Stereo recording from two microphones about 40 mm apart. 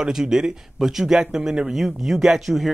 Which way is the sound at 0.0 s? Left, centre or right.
Centre.